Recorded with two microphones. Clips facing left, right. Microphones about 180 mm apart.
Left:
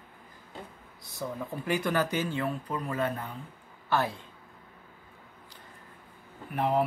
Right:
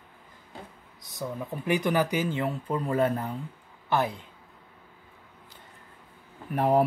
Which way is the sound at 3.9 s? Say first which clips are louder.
Right 2 dB; 15° right (ahead or behind).